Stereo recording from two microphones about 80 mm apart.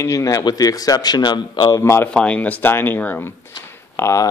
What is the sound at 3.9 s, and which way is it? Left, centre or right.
Speech, left.